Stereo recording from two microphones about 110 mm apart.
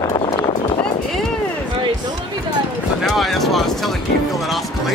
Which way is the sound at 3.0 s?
Centre (ahead or behind).